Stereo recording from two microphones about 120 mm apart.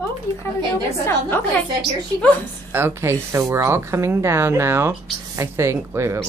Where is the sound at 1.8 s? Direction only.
5° left (ahead or behind).